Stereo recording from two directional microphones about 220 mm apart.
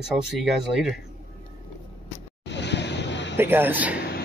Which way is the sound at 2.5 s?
50° left (ahead or behind).